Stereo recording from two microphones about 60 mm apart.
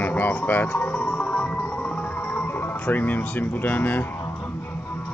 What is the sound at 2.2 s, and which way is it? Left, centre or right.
Speech, left.